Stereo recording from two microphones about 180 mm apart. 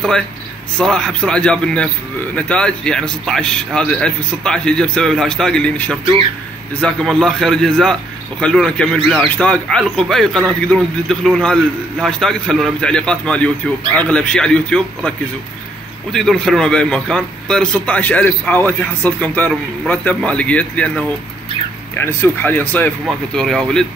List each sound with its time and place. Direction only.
0.7 s a man's voice: 5° left (ahead or behind)
16.1 s speech: 5° left (ahead or behind)